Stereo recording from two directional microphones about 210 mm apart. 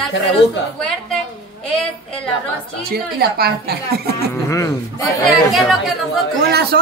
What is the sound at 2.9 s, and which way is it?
A woman's voice, 50° right (ahead or behind).